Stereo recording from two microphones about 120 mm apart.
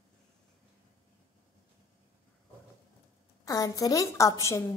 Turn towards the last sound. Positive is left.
turn(degrees=25)  # may be behind; listen again after turning